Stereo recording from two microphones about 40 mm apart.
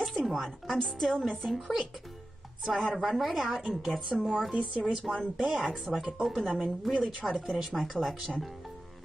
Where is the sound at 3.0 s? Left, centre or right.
Centre.